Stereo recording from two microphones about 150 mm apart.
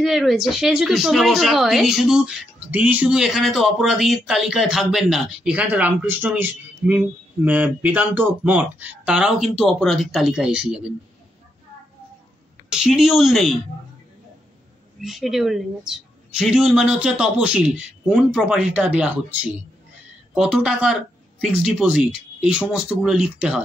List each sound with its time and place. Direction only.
0.0 s a woman's voice: centre (ahead or behind)
12.6 s a woman's voice: 5° right (ahead or behind)
15.0 s a woman's voice: centre (ahead or behind)
20.3 s a woman's voice: 5° right (ahead or behind)